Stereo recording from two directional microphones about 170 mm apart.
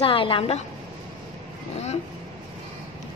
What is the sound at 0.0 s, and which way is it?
Speech, 30° left (ahead or behind).